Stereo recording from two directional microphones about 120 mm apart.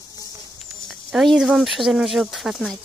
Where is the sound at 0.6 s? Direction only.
Centre (ahead or behind).